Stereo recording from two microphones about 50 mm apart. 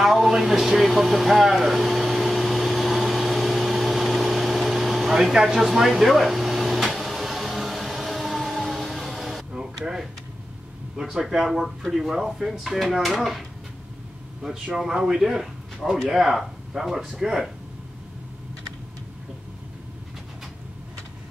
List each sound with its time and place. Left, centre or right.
0.0 s vehicle: centre
5.2 s air conditioning: centre
9.5 s a sound: centre
11.0 s speech: centre
14.4 s a man's voice: centre